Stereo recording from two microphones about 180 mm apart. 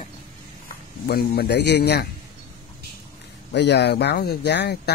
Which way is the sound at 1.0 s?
60° left (ahead or behind).